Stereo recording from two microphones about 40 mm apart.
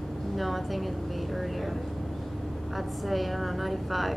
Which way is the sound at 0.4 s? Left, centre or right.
Centre.